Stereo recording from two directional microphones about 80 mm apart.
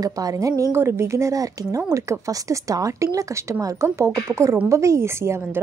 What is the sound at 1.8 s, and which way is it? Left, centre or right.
Speech, right.